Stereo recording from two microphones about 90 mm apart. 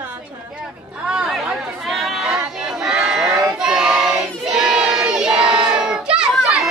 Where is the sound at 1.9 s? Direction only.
Centre (ahead or behind).